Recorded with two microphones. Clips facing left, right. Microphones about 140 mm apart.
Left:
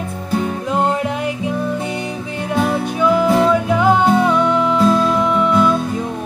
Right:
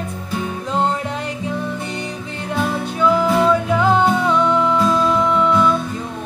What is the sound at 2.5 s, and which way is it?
Music, 15° left (ahead or behind).